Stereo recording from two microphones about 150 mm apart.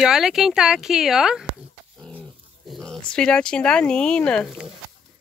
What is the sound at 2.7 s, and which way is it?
Speech, 5° left (ahead or behind).